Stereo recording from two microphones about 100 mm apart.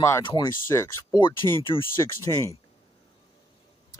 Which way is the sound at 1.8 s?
25° left (ahead or behind).